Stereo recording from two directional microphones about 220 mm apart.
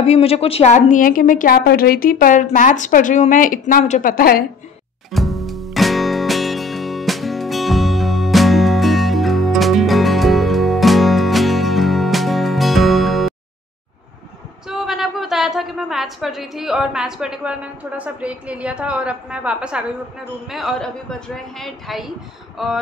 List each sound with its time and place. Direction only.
0.0 s a woman's voice: 30° left (ahead or behind)
5.1 s music: centre (ahead or behind)
14.7 s a woman's voice: centre (ahead or behind)